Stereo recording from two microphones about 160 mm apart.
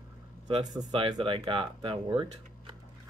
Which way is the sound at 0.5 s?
30° right (ahead or behind).